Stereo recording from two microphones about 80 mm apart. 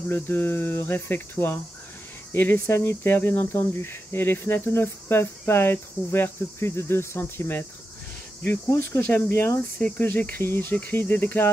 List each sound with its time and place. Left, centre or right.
0.1 s speech: left
8.7 s speech: left